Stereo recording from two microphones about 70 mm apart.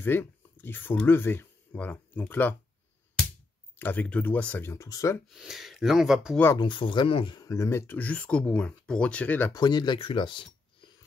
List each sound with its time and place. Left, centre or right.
0.0 s speech: left
3.7 s speech: left
4.7 s speech: left
5.3 s speech: centre
6.6 s speech: left
7.4 s speech: left
8.0 s speech: left
9.5 s speech: left